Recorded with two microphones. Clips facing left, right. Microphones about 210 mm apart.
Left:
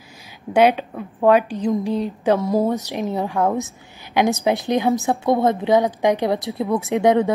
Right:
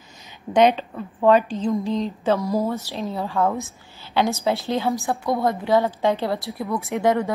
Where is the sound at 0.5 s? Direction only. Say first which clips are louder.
Left 1 dB; 10° left (ahead or behind).